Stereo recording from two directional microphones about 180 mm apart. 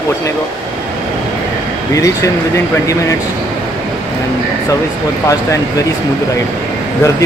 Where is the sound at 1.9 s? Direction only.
20° left (ahead or behind).